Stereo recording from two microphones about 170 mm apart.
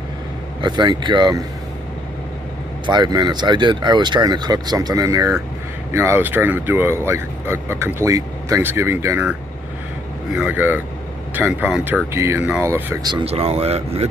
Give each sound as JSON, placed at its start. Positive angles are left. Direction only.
{"t": 0.6, "sound": "speech", "side_deg": -25}
{"t": 2.9, "sound": "speech", "side_deg": -25}
{"t": 10.3, "sound": "speech", "side_deg": -10}
{"t": 13.2, "sound": "speech", "side_deg": -35}